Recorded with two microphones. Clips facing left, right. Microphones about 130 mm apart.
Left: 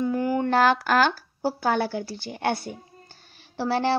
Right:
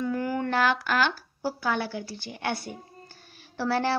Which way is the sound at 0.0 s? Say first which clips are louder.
Left 4 dB; 25° left (ahead or behind).